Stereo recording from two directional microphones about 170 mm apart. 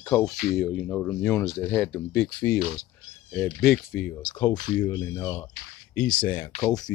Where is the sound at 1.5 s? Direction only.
Centre (ahead or behind).